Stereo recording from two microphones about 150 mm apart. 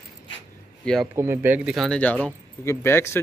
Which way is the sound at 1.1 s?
15° right (ahead or behind).